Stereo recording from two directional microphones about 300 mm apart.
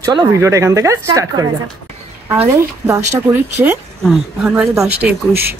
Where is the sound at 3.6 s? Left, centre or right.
Centre.